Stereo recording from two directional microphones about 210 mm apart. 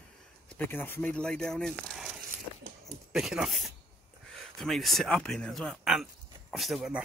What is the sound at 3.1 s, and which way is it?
Speech, 5° right (ahead or behind).